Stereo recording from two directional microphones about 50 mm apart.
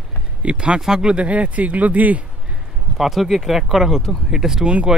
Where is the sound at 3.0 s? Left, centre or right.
Centre.